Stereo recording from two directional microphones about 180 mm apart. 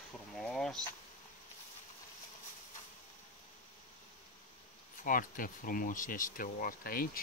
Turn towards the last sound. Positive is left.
turn(degrees=55)  # may be behind; listen again after turning